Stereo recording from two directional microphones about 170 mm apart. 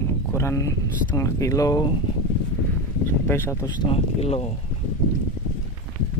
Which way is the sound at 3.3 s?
15° left (ahead or behind).